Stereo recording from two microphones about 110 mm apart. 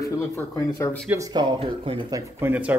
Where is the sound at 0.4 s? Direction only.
30° left (ahead or behind).